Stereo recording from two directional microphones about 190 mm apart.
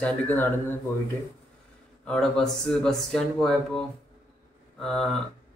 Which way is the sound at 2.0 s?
5° left (ahead or behind).